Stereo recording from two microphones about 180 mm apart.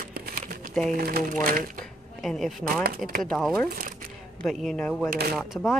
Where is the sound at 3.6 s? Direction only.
50° right (ahead or behind).